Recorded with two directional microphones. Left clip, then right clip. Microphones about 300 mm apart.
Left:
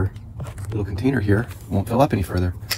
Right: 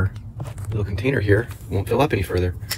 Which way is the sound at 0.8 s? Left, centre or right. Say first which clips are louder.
Even; centre.